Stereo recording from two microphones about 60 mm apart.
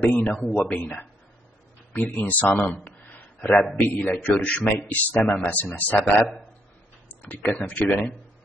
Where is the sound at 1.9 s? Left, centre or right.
Left.